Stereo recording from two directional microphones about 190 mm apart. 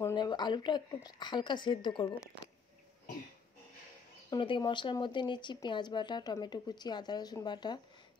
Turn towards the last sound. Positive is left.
turn(degrees=25)  # may be behind; listen again after turning